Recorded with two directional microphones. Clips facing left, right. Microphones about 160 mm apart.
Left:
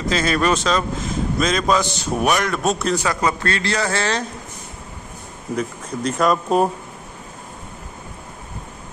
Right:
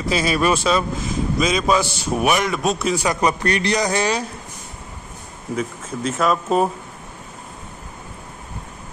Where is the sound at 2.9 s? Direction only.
20° right (ahead or behind).